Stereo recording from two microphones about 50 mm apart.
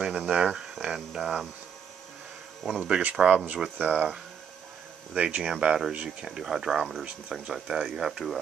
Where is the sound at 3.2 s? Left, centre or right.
Right; by 8.3 s centre.